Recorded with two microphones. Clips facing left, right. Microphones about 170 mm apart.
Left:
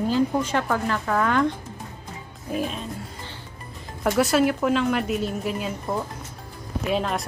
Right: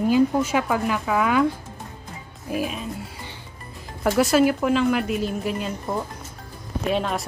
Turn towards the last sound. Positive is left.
turn(degrees=0)  # may be behind; listen again after turning